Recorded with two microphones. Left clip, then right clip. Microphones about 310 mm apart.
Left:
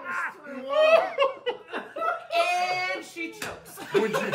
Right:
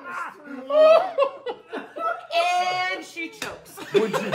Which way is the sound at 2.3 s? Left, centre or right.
Right.